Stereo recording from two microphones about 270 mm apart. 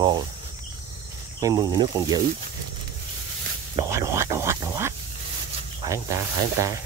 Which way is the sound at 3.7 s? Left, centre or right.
Centre.